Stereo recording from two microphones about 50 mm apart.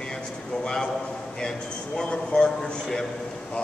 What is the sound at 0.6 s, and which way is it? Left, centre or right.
Speech, centre.